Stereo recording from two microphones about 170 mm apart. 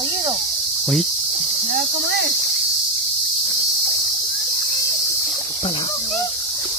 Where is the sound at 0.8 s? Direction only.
Centre (ahead or behind).